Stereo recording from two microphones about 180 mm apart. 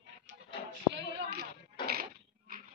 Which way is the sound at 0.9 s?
65° right (ahead or behind).